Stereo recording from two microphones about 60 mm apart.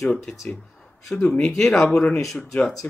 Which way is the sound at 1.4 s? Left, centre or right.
Centre.